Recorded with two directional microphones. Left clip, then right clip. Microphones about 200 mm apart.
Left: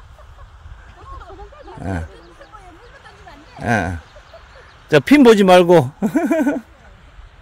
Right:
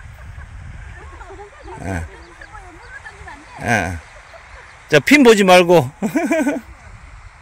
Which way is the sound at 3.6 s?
15° left (ahead or behind).